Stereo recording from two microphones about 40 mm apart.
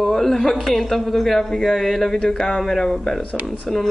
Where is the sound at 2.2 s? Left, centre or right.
Centre.